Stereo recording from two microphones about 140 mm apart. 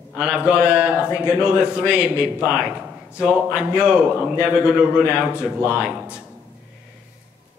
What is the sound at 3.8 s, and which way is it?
Speech, 10° right (ahead or behind).